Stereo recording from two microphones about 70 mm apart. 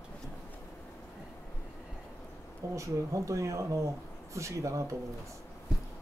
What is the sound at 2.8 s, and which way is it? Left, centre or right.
Speech, right.